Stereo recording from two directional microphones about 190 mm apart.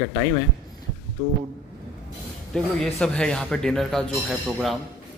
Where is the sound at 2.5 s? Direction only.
5° left (ahead or behind).